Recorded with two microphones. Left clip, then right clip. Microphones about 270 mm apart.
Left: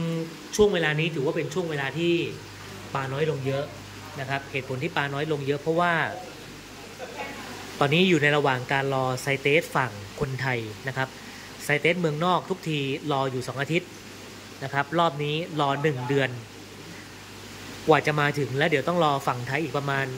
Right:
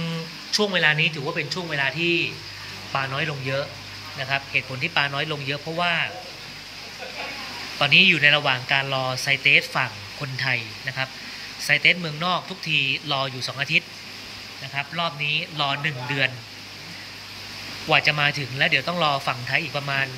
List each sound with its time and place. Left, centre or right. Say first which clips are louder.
0.7 s speech: right 4 dB; centre
7.8 s speech: right 6 dB; centre
17.8 s speech: right 2 dB; centre